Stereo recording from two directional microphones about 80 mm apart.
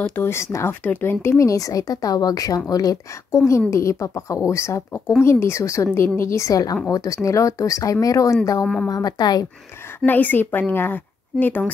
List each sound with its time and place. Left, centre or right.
0.1 s speech: left
1.4 s a woman's voice: left
3.3 s a woman's voice: left
8.8 s speech: left
9.9 s speech: left